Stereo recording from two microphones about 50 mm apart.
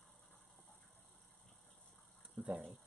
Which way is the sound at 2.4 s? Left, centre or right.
Right.